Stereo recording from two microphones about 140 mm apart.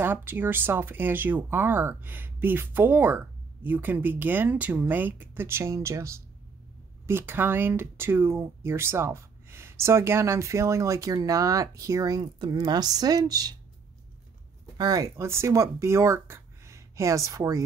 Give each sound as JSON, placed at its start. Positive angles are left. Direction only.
{"t": 0.0, "sound": "speech", "side_deg": -15}
{"t": 14.8, "sound": "speech", "side_deg": -25}